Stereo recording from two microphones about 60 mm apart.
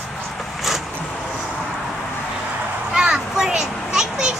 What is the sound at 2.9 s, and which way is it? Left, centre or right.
Children playing, centre.